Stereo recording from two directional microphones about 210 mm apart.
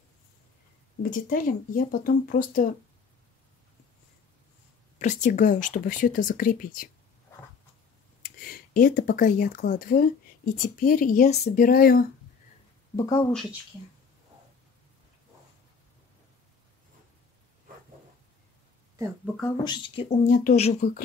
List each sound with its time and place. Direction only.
1.1 s speech: 40° left (ahead or behind)
4.9 s speech: 35° left (ahead or behind)
8.2 s speech: 45° left (ahead or behind)
12.9 s speech: 15° left (ahead or behind)
13.3 s speech: centre (ahead or behind)
19.5 s speech: 20° left (ahead or behind)
20.1 s speech: 40° left (ahead or behind)